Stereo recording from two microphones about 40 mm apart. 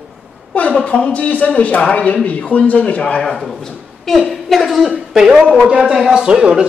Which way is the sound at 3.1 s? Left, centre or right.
Left.